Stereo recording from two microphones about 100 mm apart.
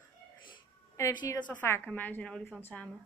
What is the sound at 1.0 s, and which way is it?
Speech, 45° left (ahead or behind).